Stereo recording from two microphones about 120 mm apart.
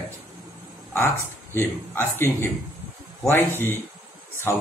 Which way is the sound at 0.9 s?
20° left (ahead or behind).